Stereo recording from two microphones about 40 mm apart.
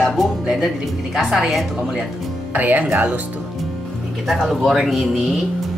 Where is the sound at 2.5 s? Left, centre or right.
Right.